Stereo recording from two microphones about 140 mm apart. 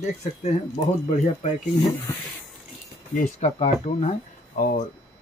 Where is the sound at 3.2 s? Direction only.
55° left (ahead or behind).